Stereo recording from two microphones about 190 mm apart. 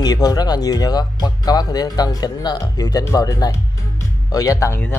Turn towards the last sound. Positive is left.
turn(degrees=15)  # may be behind; listen again after turning